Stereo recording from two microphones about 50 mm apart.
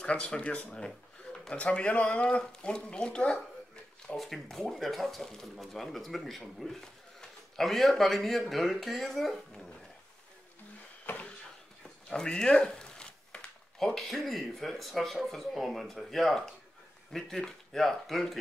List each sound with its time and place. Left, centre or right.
0.0 s speech: left
4.2 s speech: centre
11.8 s a sound: centre
13.7 s speech: centre